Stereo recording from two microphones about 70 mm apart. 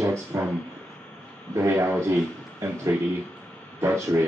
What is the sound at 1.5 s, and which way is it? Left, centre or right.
Speech, right.